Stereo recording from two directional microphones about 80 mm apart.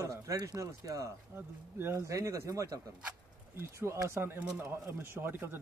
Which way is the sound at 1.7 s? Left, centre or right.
Right.